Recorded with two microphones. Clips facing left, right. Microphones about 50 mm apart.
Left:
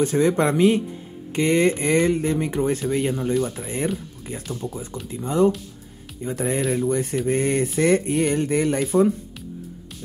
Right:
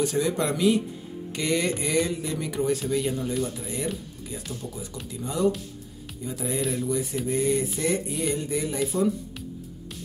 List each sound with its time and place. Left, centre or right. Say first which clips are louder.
0.0 s speech: left 6 dB; left
5.1 s speech: left 6 dB; left
6.2 s speech: left 5 dB; left